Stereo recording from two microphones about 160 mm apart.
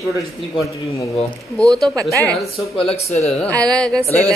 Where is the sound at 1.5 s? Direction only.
5° left (ahead or behind).